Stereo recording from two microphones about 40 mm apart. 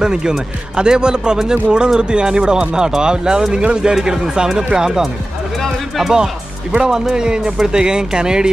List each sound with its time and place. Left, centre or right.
0.0 s speech: centre